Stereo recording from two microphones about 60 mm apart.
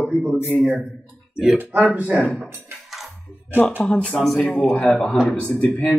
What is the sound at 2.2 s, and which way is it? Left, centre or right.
Speech, centre.